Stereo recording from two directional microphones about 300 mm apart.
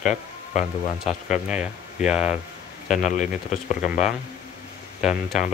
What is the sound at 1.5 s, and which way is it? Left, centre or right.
Speech, centre.